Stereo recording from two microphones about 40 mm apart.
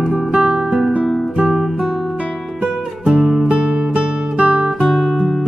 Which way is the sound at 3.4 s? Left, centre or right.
Right.